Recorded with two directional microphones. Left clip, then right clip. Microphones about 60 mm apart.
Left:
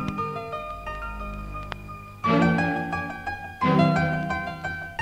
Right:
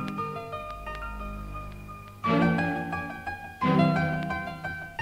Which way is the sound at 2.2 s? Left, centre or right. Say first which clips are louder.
Left 3 dB; right.